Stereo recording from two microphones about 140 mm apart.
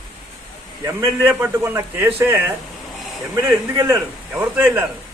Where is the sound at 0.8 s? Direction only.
20° right (ahead or behind).